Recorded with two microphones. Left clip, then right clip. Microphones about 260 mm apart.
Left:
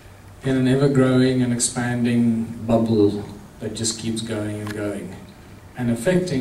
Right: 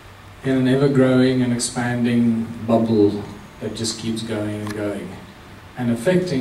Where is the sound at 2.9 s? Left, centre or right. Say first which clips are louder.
Right 1 dB; right.